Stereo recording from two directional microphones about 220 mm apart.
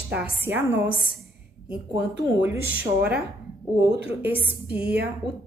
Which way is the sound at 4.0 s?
5° right (ahead or behind).